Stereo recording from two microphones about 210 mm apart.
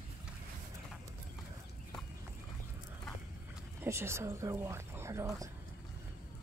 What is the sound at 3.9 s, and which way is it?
Speech, 10° right (ahead or behind).